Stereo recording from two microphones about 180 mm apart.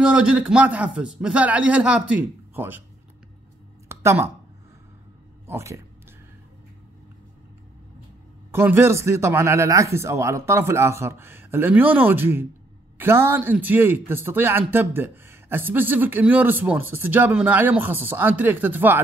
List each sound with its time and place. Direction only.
0.0 s a man's voice: 5° right (ahead or behind)
3.9 s a sound: 15° right (ahead or behind)
5.5 s a man's voice: 15° right (ahead or behind)
8.5 s a man's voice: 10° right (ahead or behind)